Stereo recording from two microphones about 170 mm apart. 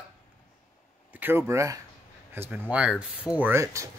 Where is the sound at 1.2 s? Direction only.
15° right (ahead or behind).